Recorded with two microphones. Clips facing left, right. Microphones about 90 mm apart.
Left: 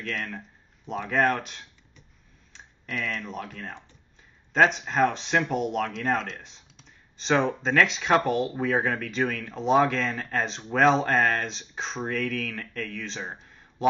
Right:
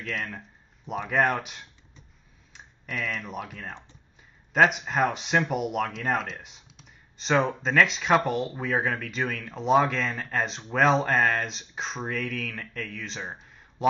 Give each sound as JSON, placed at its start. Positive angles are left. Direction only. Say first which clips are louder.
{"t": 0.0, "sound": "speech", "louder": "even", "side_deg": -5}